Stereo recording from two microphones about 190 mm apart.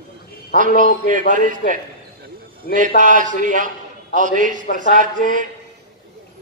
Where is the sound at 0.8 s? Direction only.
45° right (ahead or behind).